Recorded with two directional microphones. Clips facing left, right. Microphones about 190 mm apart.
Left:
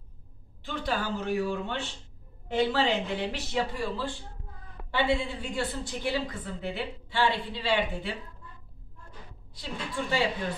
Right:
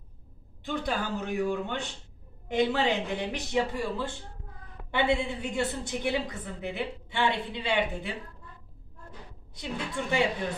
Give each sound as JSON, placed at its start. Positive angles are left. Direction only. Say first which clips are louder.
{"t": 0.7, "sound": "a woman's voice", "louder": "even", "side_deg": -15}
{"t": 9.6, "sound": "a woman's voice", "louder": "right 1 dB", "side_deg": -20}